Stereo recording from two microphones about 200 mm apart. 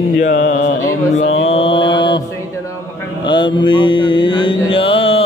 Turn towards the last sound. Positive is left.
turn(degrees=25)  # may be behind; listen again after turning